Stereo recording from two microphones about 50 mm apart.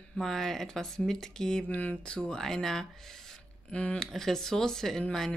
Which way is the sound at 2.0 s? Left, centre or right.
Centre.